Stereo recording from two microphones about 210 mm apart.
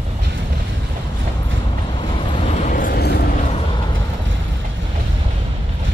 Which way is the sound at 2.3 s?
35° left (ahead or behind).